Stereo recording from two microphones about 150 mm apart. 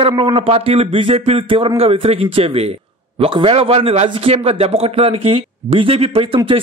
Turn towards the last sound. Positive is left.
turn(degrees=-40)  # may be behind; listen again after turning